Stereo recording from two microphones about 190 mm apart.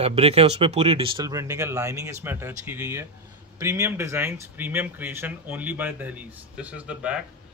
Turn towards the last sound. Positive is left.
turn(degrees=-5)  # may be behind; listen again after turning